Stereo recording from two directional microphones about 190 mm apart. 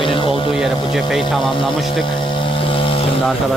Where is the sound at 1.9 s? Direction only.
25° left (ahead or behind).